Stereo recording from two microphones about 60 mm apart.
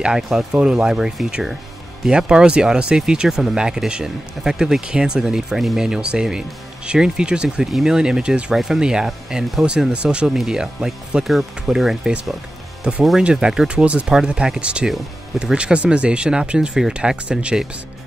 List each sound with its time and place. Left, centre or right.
0.0 s speech: centre